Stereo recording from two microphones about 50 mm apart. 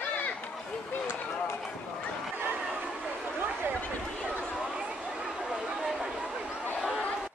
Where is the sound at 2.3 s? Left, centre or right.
Right.